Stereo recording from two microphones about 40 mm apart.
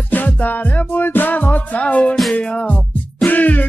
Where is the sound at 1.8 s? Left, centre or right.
Left.